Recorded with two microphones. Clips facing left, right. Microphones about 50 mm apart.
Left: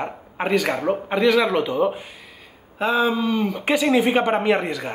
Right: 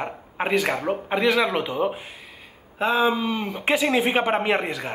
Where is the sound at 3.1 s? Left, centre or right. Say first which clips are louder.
Left 3 dB; right.